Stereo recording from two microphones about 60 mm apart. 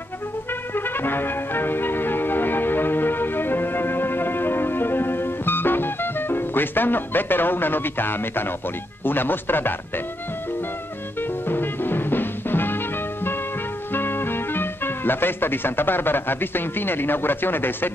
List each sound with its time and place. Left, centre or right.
0.7 s music: left
9.0 s speech: left
11.1 s music: left
13.9 s speech: left